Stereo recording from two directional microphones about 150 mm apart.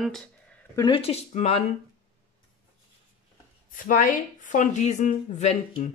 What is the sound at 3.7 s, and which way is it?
Speech, 65° left (ahead or behind).